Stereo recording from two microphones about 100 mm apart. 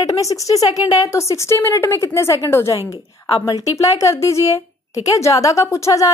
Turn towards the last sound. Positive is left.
turn(degrees=30)  # may be behind; listen again after turning